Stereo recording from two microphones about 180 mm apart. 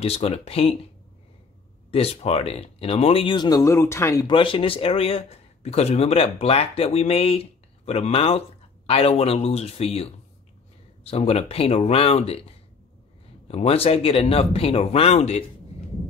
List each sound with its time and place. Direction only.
0.0 s speech: 35° left (ahead or behind)
1.9 s speech: 35° left (ahead or behind)